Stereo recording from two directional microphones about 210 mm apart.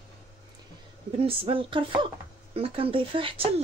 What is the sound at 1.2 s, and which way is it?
Speech, 25° right (ahead or behind).